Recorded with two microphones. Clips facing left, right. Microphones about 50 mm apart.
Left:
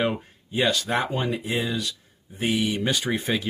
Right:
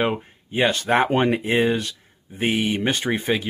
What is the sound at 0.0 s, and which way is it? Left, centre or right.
Speech, right.